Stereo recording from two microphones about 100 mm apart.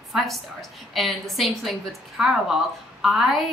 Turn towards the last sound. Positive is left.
turn(degrees=0)  # may be behind; listen again after turning